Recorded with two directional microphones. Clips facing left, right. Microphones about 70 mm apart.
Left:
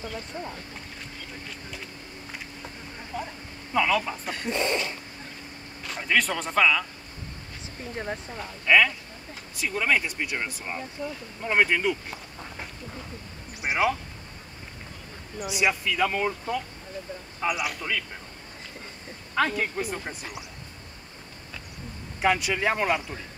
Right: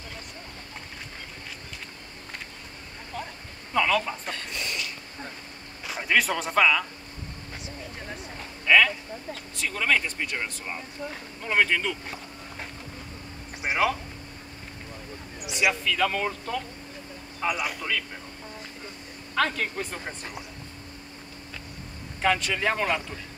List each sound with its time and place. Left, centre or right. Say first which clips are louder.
3.1 s a sound: left 2 dB; centre
3.7 s speech: even; centre
4.4 s speech: left 7 dB; left
5.9 s speech: right 1 dB; centre
8.6 s speech: even; centre
11.0 s speech: left 2 dB; right
11.4 s speech: left 1 dB; centre
13.6 s a sound: even; centre
15.8 s speech: even; centre
17.4 s speech: even; centre
19.3 s speech: left 1 dB; centre
22.2 s speech: left 1 dB; centre